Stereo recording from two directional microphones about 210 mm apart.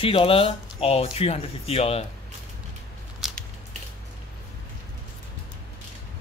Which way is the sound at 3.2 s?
Centre (ahead or behind).